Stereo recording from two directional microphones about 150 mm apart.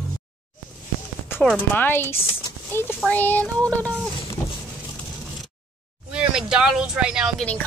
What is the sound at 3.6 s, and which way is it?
Speech, 20° right (ahead or behind).